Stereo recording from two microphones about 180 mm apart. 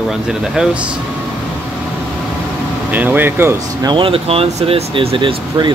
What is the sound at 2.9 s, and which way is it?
Speech, 10° right (ahead or behind).